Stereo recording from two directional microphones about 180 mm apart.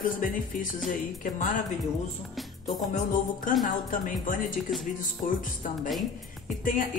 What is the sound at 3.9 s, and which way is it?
Speech, 45° left (ahead or behind).